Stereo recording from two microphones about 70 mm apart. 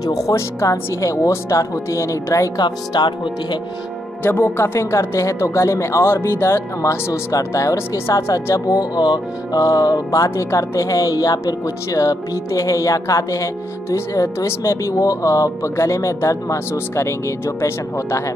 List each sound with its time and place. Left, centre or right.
0.0 s speech: left
0.6 s speech: left
2.6 s speech: left
4.2 s speech: left
4.7 s speech: left
8.2 s speech: left
8.5 s speech: left